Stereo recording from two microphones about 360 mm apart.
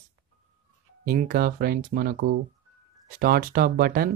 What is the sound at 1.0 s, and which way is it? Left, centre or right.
Speech, right.